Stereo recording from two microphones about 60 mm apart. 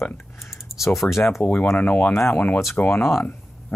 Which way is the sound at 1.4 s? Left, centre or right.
Left.